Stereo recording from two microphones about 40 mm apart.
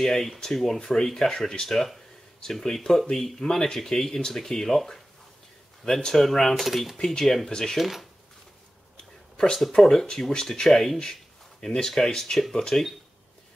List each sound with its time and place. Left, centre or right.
0.0 s speech: centre
6.0 s speech: centre
7.0 s speech: centre
7.8 s speech: centre
8.9 s a sound: centre
9.8 s speech: centre